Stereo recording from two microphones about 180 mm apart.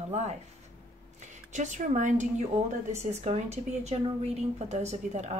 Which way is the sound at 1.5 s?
40° right (ahead or behind).